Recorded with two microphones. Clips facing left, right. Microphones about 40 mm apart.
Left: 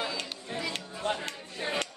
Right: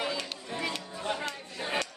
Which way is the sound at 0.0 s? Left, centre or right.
Right.